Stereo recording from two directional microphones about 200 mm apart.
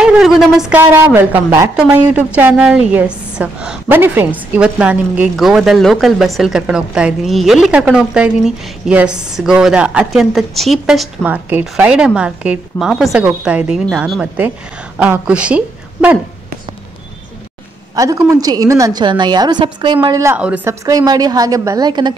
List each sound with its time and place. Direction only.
0.0 s a woman's voice: centre (ahead or behind)
17.9 s a woman's voice: 15° right (ahead or behind)